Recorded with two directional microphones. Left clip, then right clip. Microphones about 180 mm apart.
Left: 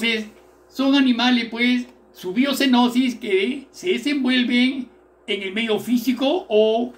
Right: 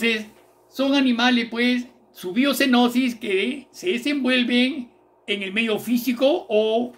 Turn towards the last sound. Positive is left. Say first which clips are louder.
# left 2 dB
turn(degrees=-50)  # may be behind; listen again after turning